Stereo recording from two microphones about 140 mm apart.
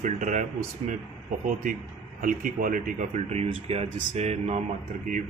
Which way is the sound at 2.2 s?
75° right (ahead or behind).